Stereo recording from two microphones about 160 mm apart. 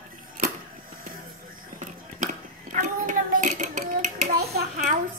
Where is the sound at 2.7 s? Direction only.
55° right (ahead or behind).